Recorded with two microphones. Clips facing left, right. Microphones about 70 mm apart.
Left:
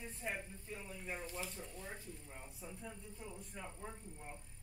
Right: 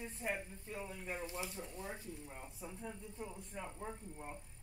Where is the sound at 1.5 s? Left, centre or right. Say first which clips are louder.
Right 3 dB; right.